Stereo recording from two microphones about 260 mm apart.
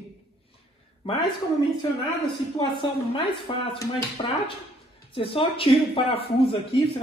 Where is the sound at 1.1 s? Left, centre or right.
Centre.